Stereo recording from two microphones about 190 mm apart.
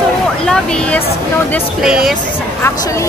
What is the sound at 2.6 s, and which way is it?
Speech, 15° left (ahead or behind).